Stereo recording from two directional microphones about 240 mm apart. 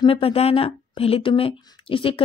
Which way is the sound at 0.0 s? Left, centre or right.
Left.